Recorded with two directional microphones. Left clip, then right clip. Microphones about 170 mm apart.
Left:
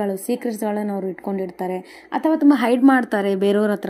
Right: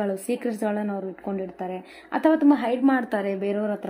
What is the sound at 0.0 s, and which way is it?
Speech, 5° left (ahead or behind).